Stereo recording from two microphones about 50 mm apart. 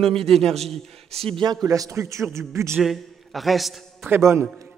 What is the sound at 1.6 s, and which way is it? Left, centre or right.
Speech, right.